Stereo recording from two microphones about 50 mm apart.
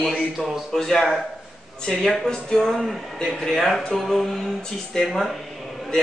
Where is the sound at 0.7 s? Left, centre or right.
Centre.